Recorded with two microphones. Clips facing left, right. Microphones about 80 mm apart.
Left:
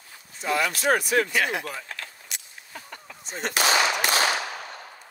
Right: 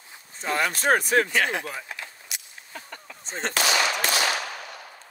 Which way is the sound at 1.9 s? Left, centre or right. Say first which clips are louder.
Even; centre.